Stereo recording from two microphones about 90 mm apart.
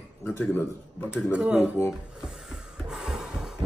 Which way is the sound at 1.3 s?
15° right (ahead or behind).